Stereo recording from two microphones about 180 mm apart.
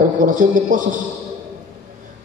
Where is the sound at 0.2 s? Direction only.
45° right (ahead or behind).